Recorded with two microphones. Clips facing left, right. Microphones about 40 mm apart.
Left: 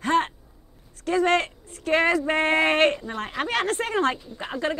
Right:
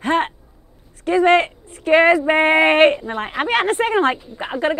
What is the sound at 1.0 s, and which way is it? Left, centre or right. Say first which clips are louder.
Speech: right 7 dB; right.